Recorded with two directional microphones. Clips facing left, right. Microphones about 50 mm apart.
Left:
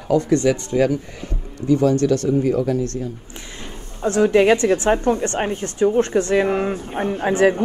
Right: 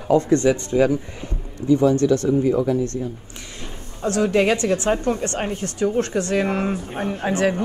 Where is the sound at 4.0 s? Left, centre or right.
Left.